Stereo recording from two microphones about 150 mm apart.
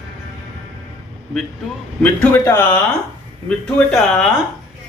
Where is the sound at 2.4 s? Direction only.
15° left (ahead or behind).